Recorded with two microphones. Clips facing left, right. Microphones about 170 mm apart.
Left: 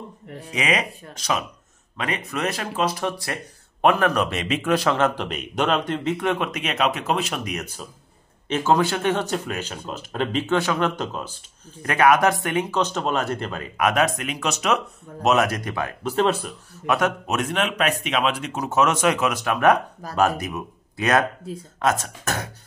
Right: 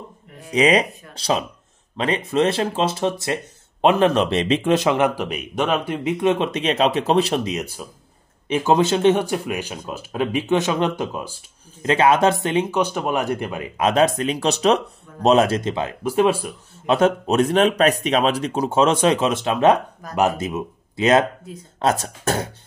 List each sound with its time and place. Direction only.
0.5 s speech: 35° right (ahead or behind)
7.5 s speech: 10° right (ahead or behind)
11.8 s speech: 25° right (ahead or behind)
13.7 s speech: 25° right (ahead or behind)
16.0 s speech: 10° right (ahead or behind)
16.7 s speech: 25° right (ahead or behind)